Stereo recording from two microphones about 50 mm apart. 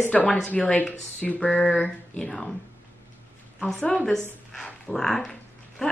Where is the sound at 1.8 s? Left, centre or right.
Centre.